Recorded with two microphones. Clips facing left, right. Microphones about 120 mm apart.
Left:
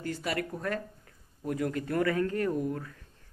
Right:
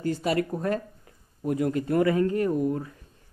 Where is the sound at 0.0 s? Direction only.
25° right (ahead or behind).